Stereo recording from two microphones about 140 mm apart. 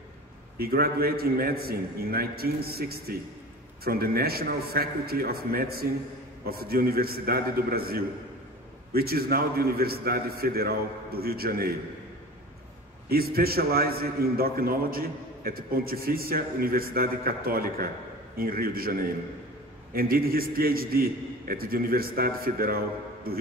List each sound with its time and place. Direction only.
0.6 s a man's voice: 90° right
13.1 s a man's voice: 90° right